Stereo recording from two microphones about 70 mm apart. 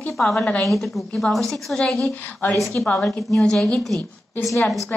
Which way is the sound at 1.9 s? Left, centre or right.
Centre.